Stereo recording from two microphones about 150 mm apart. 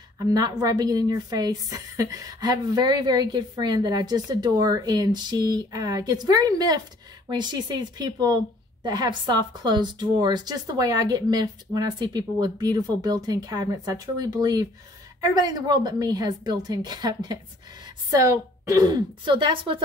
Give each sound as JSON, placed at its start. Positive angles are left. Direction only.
{"t": 0.2, "sound": "a woman's voice", "side_deg": -25}